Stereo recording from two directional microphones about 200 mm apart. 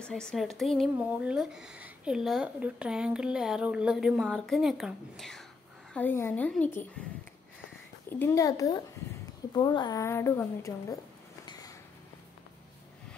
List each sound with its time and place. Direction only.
0.0 s a woman's voice: 5° left (ahead or behind)
8.1 s a woman's voice: 10° left (ahead or behind)